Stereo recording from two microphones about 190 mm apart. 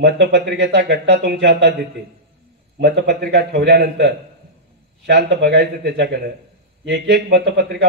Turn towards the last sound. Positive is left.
turn(degrees=-60)  # may be behind; listen again after turning